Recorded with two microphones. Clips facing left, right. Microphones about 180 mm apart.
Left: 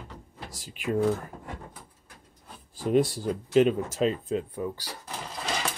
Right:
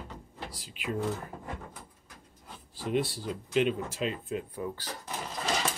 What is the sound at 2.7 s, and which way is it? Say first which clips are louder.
Speech: left 6 dB; 45° left (ahead or behind).